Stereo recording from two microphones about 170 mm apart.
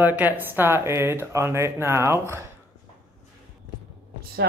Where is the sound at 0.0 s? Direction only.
10° right (ahead or behind).